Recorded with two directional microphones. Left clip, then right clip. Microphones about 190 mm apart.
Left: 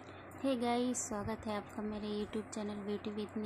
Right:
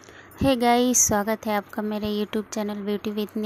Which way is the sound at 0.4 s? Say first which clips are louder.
Right 15 dB; 50° right (ahead or behind).